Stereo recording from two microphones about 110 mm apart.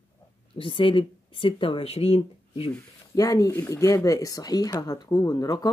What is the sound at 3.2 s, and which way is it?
Speech, 30° left (ahead or behind).